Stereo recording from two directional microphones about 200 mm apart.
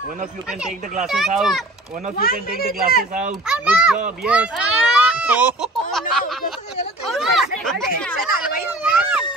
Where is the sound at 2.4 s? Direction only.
50° left (ahead or behind).